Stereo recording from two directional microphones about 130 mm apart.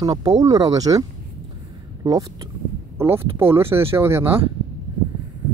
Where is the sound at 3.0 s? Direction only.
20° right (ahead or behind).